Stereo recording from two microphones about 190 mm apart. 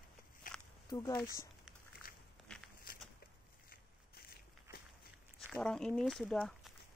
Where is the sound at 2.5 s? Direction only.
5° left (ahead or behind).